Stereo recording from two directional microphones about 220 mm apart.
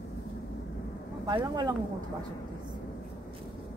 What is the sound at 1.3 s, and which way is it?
Speech, 20° right (ahead or behind).